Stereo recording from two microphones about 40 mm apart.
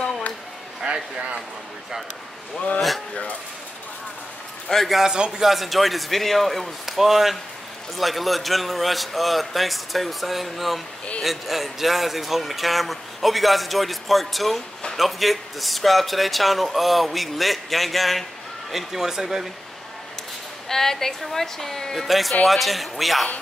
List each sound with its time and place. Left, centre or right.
0.9 s speech: right
4.7 s a man's voice: centre
5.0 s speech: centre
5.4 s speech: centre
18.7 s speech: centre
20.6 s a woman's voice: centre
22.0 s speech: centre